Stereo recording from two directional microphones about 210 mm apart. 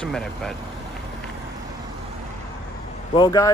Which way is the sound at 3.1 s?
15° left (ahead or behind).